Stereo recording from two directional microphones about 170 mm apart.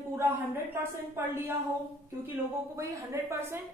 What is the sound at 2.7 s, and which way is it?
Speech, 15° right (ahead or behind).